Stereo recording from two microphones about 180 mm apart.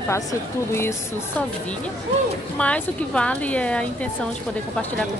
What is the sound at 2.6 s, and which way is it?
A woman's voice, 5° left (ahead or behind).